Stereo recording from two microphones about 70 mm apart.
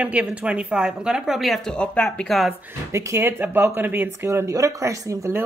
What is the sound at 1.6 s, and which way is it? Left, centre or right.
Speech, centre.